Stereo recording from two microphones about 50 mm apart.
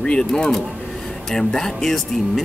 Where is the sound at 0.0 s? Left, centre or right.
Centre.